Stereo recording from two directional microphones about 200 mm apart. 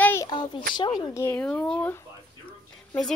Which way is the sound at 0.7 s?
20° left (ahead or behind).